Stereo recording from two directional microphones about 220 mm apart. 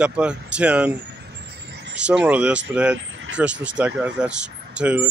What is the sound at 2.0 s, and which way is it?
Speech, 5° right (ahead or behind).